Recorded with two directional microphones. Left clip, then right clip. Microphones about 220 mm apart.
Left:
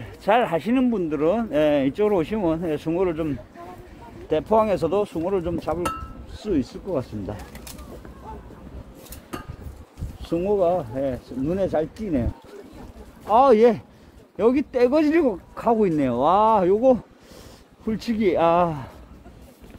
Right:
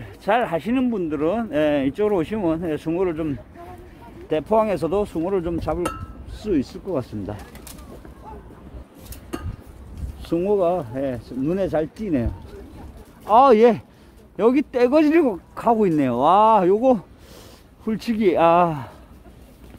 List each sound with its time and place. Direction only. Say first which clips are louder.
0.0 s speech: left 1 dB; 5° right (ahead or behind); by 7.3 s 25° right (ahead or behind)
10.2 s speech: right 1 dB; 30° right (ahead or behind)